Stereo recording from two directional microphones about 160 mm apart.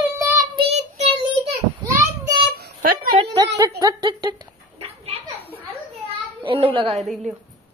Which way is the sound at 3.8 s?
25° right (ahead or behind).